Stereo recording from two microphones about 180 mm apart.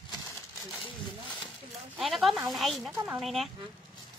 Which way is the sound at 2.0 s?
Centre (ahead or behind).